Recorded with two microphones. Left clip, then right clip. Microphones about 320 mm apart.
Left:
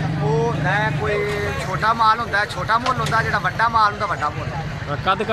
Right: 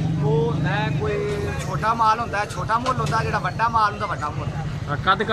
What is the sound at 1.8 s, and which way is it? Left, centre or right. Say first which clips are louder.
Speech: left 2 dB; centre.